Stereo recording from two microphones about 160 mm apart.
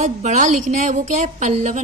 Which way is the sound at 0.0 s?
45° right (ahead or behind).